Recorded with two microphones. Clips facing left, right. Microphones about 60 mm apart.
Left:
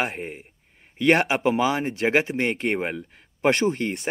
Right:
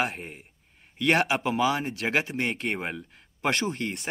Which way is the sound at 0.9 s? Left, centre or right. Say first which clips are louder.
Left 4 dB; left.